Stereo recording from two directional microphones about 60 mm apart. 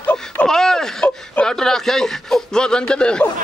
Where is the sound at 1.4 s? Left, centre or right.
Centre.